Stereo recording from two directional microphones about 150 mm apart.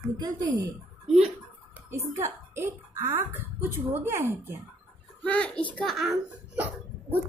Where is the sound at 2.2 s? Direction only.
15° right (ahead or behind).